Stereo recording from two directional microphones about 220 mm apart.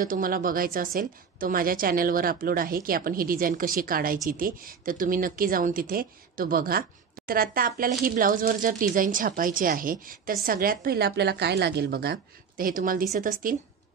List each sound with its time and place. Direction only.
0.0 s speech: 40° right (ahead or behind)